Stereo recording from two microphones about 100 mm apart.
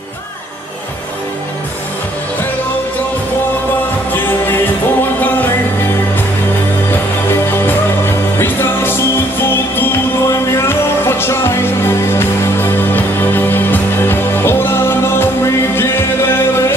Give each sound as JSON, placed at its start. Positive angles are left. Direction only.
{"t": 7.2, "sound": "music", "side_deg": 25}